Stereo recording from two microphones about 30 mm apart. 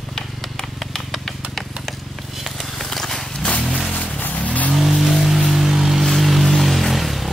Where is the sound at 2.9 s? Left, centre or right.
Centre.